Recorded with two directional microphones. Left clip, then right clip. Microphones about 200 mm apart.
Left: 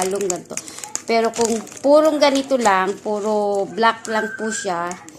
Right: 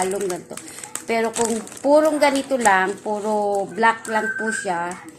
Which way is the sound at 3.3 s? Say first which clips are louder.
Left 1 dB; 35° left (ahead or behind).